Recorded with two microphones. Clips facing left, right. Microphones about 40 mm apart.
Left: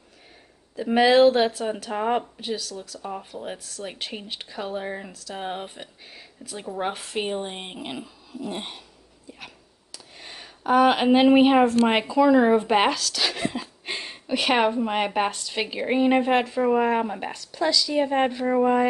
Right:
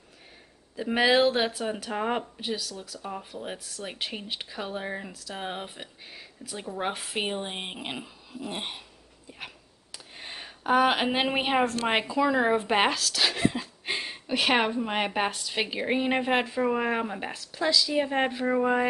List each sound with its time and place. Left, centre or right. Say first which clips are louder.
0.7 s speech: left 5 dB; centre
9.9 s a sound: right 1 dB; right
10.7 s speech: left 5 dB; centre